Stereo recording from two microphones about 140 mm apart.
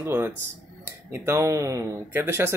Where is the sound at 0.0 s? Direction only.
15° right (ahead or behind).